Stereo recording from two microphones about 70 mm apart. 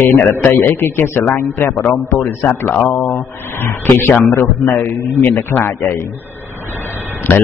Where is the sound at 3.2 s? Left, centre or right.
Left.